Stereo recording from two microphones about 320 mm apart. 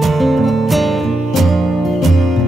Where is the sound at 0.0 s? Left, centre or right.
Centre.